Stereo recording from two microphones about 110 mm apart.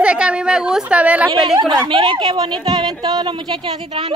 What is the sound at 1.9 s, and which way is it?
Speech, 50° right (ahead or behind).